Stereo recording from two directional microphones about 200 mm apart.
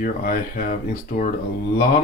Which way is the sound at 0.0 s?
45° left (ahead or behind).